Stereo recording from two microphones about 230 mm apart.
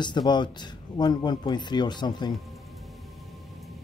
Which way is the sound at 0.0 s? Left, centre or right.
Centre.